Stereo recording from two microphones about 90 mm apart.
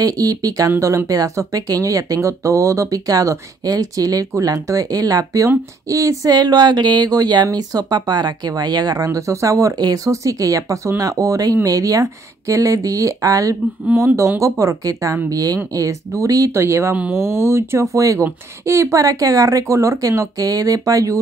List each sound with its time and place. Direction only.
0.0 s speech: 45° right (ahead or behind)
16.9 s speech: 15° right (ahead or behind)
17.2 s speech: 30° right (ahead or behind)